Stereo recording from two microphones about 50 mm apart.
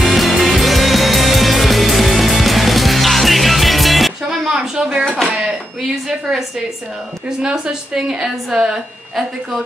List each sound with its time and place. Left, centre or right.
0.0 s music: centre
4.5 s a sound: centre
7.4 s a woman's voice: centre